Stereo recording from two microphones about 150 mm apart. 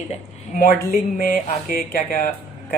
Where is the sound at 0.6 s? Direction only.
70° left (ahead or behind).